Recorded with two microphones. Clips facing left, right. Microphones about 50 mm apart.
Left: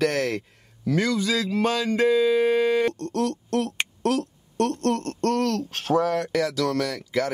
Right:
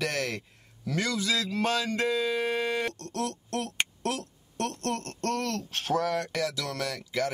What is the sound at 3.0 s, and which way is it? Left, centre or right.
Speech, left.